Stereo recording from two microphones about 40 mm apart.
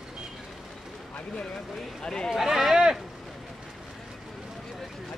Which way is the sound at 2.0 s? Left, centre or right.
Centre.